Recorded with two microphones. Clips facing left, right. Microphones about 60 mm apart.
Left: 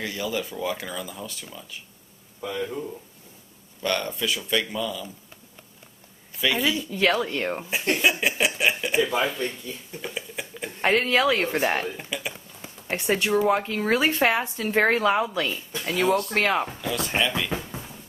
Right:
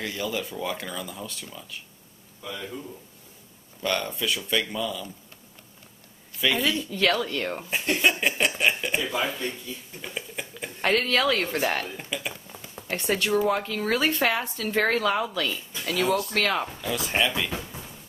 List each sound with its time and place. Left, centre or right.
0.0 s speech: centre
2.4 s speech: left
3.8 s speech: centre
6.4 s speech: centre
6.9 s speech: centre
8.0 s chuckle: centre
9.2 s speech: centre
10.8 s speech: centre
12.0 s speech: centre
12.8 s speech: left
16.8 s speech: centre
17.5 s music: left